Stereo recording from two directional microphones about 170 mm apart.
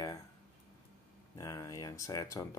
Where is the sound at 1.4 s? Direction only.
20° left (ahead or behind).